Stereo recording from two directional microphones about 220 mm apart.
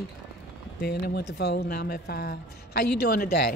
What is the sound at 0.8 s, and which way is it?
Speech, 45° left (ahead or behind).